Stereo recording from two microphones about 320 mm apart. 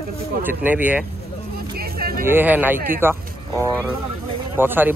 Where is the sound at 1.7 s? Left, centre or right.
Right.